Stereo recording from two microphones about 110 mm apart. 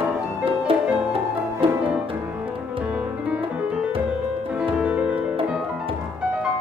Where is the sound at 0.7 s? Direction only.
55° right (ahead or behind).